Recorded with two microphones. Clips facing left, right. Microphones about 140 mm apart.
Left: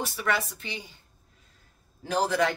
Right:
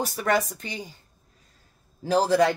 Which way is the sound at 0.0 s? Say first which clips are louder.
Right 5 dB; 40° right (ahead or behind).